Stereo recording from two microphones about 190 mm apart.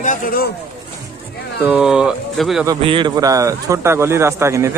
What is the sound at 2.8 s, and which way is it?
Speech, 25° right (ahead or behind).